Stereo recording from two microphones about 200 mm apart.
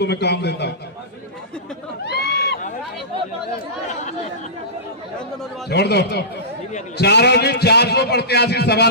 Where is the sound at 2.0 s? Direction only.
55° left (ahead or behind).